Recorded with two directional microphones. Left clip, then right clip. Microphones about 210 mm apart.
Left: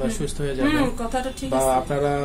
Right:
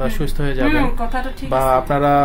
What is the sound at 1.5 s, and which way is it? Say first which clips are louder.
Speech: right 5 dB; 45° right (ahead or behind).